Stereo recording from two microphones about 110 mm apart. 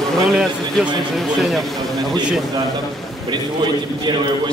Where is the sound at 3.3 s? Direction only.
40° right (ahead or behind).